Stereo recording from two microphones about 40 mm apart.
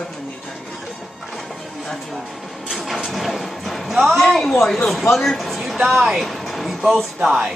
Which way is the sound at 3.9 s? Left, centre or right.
Centre.